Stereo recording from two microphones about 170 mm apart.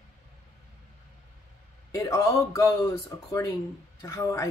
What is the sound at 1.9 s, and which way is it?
Speech, 20° left (ahead or behind).